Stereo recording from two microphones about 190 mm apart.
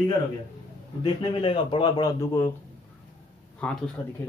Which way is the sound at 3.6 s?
5° left (ahead or behind).